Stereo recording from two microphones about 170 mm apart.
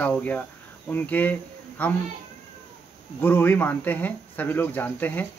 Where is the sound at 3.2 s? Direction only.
10° left (ahead or behind).